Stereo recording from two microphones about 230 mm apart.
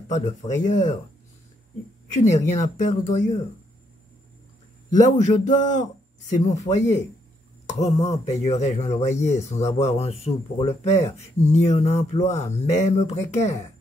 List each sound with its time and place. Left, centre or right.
0.1 s a man's voice: left
2.1 s a man's voice: left
5.0 s a man's voice: left